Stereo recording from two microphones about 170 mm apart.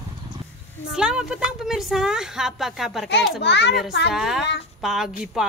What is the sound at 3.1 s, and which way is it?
Speech, 90° left.